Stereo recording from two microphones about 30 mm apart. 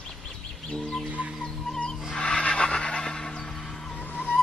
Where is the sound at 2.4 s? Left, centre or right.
Left.